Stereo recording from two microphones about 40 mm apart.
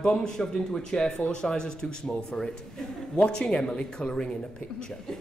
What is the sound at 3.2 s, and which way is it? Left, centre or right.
Speech, left.